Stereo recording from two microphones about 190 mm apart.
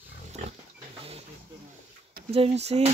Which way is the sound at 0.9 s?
30° right (ahead or behind).